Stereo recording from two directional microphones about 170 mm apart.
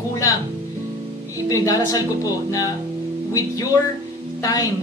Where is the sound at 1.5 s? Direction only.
20° left (ahead or behind).